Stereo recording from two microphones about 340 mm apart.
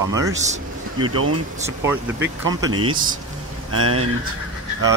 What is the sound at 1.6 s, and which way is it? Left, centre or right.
Speech, centre.